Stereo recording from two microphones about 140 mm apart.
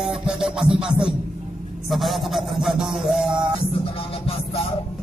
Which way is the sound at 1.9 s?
Centre (ahead or behind).